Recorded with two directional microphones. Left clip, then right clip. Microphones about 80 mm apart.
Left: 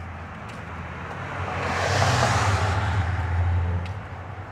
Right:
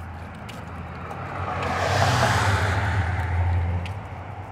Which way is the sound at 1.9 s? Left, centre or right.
Right.